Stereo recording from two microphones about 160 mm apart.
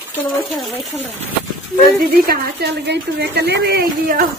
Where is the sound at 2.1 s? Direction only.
65° right (ahead or behind).